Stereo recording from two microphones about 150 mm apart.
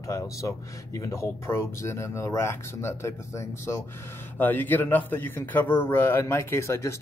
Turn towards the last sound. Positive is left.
turn(degrees=20)  # may be behind; listen again after turning